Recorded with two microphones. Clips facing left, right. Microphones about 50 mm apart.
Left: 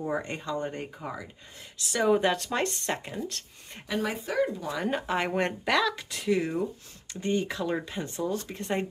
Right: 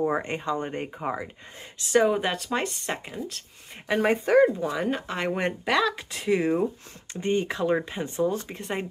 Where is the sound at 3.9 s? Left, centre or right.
Right.